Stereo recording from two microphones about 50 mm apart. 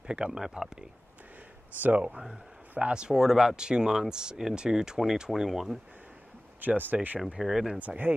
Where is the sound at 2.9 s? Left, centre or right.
Centre.